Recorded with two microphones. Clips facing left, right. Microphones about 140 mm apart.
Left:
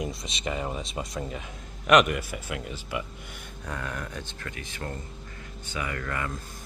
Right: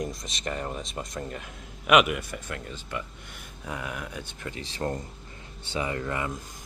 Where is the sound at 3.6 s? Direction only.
10° right (ahead or behind).